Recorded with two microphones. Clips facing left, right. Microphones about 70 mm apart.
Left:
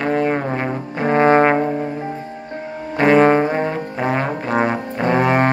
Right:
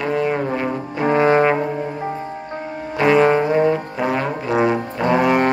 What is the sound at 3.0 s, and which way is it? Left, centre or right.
Music, left.